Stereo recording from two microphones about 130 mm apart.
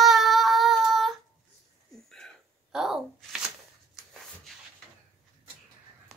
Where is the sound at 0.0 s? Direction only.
Centre (ahead or behind).